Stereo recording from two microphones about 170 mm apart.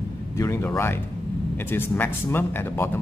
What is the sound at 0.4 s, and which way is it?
A man's voice, 15° left (ahead or behind).